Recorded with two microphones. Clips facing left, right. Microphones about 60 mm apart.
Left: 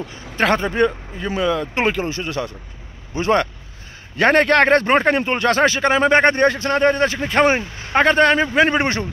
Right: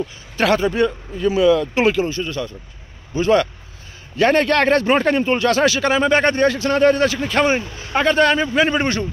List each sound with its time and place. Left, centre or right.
0.4 s speech: left
2.0 s speech: left
3.2 s speech: left